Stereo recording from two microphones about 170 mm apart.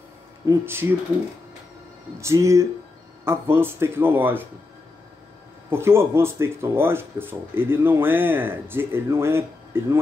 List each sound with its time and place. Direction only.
0.5 s speech: 15° right (ahead or behind)
2.1 s speech: 15° right (ahead or behind)
5.7 s speech: 15° right (ahead or behind)